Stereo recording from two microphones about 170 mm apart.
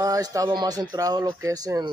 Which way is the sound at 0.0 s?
20° right (ahead or behind).